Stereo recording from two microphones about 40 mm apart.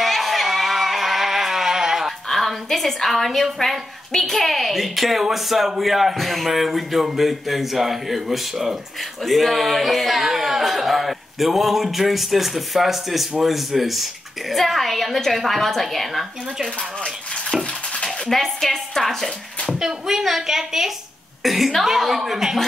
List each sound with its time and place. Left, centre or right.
0.0 s a sound: centre
2.2 s a sound: centre
4.3 s speech: centre
17.9 s dishes: left
18.3 s a woman's voice: centre
20.1 s a woman's voice: centre